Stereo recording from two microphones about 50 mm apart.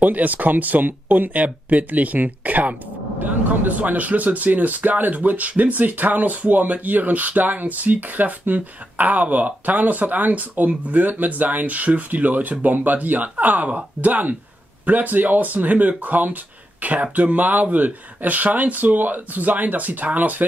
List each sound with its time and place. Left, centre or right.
0.0 s a man's voice: right